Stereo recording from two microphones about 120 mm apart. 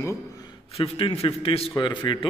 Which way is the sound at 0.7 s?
55° left (ahead or behind).